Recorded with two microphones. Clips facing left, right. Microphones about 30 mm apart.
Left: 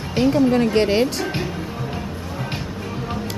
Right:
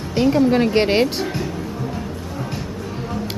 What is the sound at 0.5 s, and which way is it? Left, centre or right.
Speech, right.